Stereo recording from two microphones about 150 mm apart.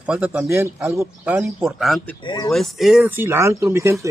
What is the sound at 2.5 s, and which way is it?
Speech, centre (ahead or behind).